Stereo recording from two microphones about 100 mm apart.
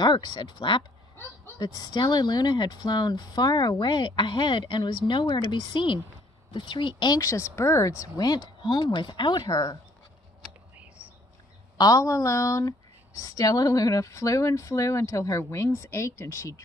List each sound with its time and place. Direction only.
0.0 s a woman's voice: 50° left (ahead or behind)
1.6 s a woman's voice: 40° left (ahead or behind)
11.8 s a woman's voice: 35° left (ahead or behind)